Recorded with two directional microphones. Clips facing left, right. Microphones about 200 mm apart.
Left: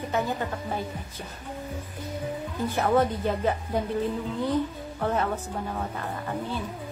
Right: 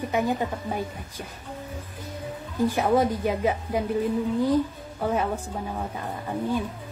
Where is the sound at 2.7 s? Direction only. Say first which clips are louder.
Left 1 dB; 10° right (ahead or behind).